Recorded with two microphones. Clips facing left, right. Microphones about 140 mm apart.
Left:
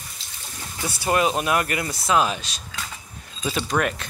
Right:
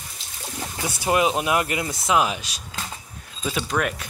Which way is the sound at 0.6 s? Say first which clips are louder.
Right 1 dB; 20° right (ahead or behind).